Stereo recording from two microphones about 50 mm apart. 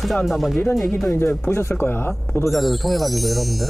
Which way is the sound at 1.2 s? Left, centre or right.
Left.